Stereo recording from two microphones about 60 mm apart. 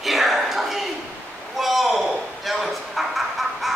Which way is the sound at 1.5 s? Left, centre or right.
Centre.